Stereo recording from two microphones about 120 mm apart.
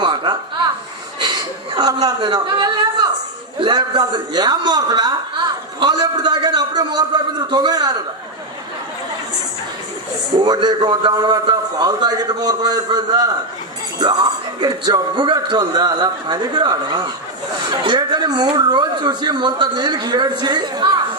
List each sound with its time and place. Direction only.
0.0 s a sound: 40° right (ahead or behind)
1.2 s chuckle: 35° right (ahead or behind)
3.5 s speech: 40° right (ahead or behind)
5.8 s a sound: 35° right (ahead or behind)
10.4 s speech: 35° right (ahead or behind)
14.6 s speech: 40° right (ahead or behind)